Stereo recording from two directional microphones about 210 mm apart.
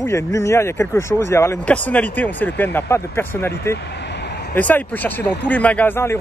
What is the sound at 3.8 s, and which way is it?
Vehicle, 55° left (ahead or behind).